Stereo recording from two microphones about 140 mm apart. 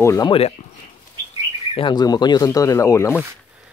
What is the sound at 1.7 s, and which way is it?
Speech, 35° left (ahead or behind).